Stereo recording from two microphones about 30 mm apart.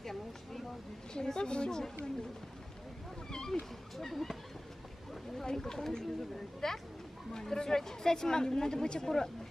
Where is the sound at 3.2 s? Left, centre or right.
Left.